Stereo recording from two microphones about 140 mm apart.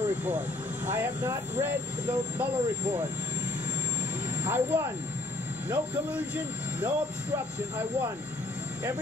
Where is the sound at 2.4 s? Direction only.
10° right (ahead or behind).